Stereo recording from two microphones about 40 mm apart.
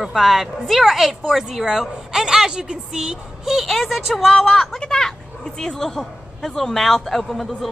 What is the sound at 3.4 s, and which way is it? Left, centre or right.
A woman's voice, centre.